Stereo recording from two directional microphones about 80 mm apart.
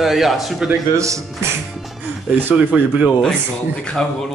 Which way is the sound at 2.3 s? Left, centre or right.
Right.